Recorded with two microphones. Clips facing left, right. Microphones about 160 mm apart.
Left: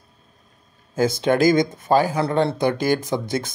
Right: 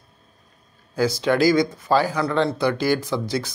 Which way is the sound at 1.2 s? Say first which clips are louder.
Left 1 dB; 20° left (ahead or behind).